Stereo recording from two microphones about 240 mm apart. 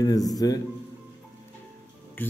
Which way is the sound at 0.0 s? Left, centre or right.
Centre.